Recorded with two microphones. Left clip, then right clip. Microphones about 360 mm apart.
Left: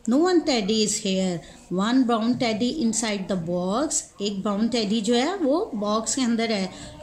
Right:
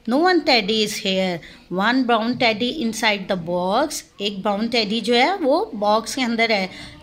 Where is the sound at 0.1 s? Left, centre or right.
Centre.